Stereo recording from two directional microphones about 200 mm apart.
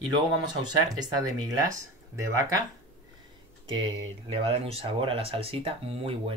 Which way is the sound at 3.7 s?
25° right (ahead or behind).